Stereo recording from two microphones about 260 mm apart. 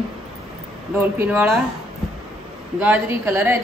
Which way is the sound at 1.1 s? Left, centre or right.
Centre.